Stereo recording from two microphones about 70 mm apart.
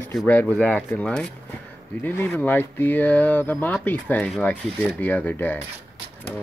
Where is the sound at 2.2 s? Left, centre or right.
Left.